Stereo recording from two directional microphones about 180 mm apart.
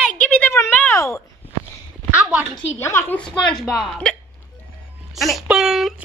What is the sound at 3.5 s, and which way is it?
Speech, centre (ahead or behind).